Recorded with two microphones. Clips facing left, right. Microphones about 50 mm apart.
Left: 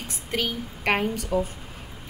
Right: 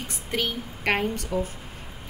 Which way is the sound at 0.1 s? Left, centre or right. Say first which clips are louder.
Left 1 dB; centre.